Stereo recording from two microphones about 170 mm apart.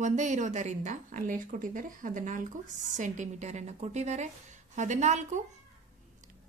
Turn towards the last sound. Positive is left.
turn(degrees=-45)  # may be behind; listen again after turning